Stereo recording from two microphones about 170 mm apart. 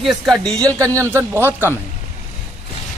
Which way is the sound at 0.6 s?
20° right (ahead or behind).